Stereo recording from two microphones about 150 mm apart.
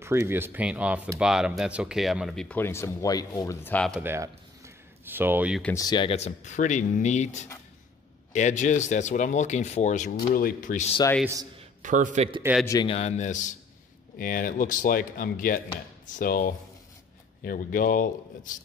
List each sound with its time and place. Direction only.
0.0 s speech: 15° right (ahead or behind); by 3.5 s 25° left (ahead or behind)
3.6 s speech: 10° left (ahead or behind)
4.0 s speech: 15° right (ahead or behind)
5.8 s speech: 30° left (ahead or behind)
6.1 s speech: 50° left (ahead or behind)
10.3 s speech: 70° left (ahead or behind)
11.8 s a man's voice: 55° right (ahead or behind)
12.5 s speech: 10° right (ahead or behind)
12.8 s speech: 45° left (ahead or behind)
14.1 s speech: 70° left (ahead or behind)